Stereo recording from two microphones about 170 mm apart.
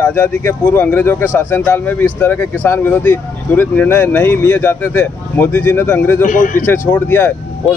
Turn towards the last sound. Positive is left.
turn(degrees=10)  # may be behind; listen again after turning